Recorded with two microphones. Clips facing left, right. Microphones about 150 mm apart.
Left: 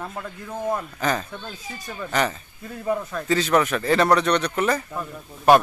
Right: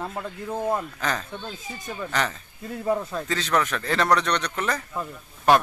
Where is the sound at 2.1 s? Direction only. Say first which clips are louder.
Left 4 dB; 5° left (ahead or behind).